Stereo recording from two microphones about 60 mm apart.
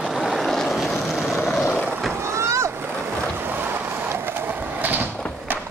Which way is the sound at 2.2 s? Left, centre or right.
Right.